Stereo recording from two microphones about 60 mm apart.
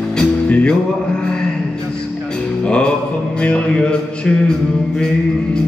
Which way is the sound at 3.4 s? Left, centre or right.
Centre.